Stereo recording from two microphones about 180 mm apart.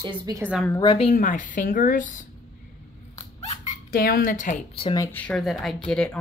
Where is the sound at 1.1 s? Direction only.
45° left (ahead or behind).